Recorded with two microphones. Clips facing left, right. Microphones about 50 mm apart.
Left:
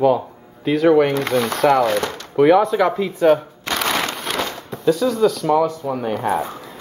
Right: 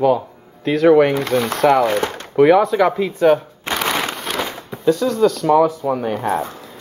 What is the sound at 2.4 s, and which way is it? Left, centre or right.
Speech, centre.